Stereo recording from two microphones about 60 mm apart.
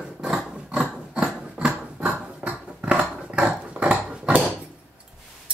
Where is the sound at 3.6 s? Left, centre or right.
Centre.